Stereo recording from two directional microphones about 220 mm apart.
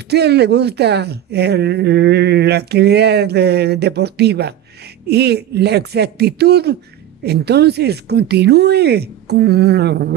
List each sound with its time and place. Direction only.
0.1 s speech: 50° right (ahead or behind)